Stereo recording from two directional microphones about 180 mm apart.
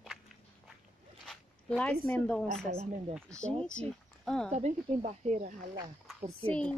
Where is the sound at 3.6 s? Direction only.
5° left (ahead or behind).